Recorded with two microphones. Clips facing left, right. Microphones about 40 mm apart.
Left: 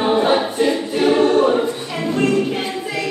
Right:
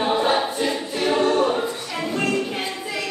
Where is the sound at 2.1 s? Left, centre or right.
Centre.